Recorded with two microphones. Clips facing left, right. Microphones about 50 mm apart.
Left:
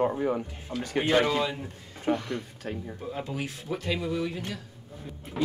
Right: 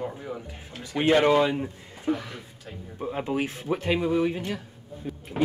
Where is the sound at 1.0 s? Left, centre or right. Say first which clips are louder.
Right 5 dB; right.